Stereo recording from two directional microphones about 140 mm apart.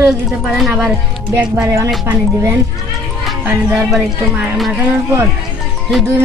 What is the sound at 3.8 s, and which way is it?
Speech, centre (ahead or behind).